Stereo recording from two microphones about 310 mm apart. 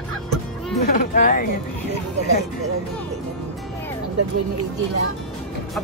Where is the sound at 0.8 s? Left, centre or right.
Left.